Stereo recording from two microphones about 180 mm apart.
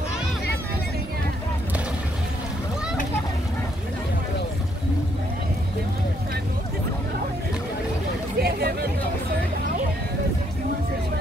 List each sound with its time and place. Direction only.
8.4 s hubbub: 60° right (ahead or behind)